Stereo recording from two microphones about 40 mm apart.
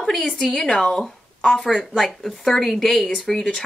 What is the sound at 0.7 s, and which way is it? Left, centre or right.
Speech, left.